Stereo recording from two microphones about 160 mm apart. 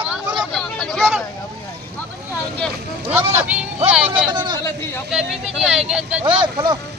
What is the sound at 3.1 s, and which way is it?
Speech, 15° right (ahead or behind).